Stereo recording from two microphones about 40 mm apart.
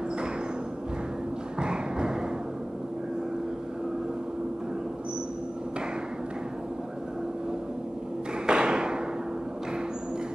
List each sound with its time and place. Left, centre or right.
1.6 s music: right
8.5 s thump: right